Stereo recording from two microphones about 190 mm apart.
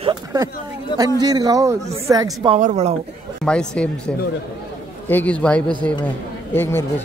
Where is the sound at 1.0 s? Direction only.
20° right (ahead or behind).